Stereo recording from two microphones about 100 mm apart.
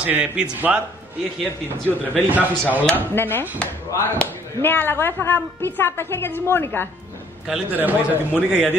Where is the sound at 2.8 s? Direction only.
20° left (ahead or behind).